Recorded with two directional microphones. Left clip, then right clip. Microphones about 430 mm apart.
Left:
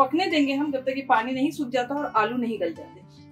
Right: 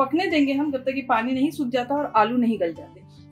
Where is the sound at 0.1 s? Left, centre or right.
Centre.